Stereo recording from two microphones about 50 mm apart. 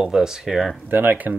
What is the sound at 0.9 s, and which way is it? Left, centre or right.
Speech, right.